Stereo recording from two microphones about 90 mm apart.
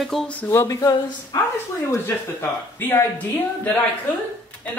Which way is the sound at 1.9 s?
25° left (ahead or behind).